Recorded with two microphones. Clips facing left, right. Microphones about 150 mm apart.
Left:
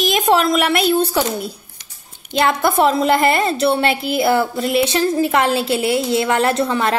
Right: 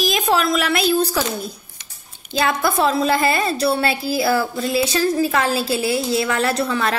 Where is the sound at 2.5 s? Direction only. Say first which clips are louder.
Left 3 dB; 25° left (ahead or behind).